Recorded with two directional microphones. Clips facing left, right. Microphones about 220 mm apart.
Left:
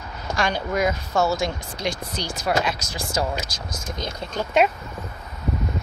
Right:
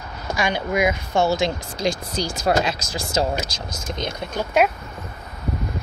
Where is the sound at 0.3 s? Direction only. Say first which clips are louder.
Right 1 dB; 10° right (ahead or behind).